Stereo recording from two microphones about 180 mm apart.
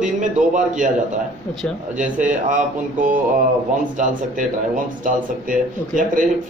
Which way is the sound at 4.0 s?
45° right (ahead or behind).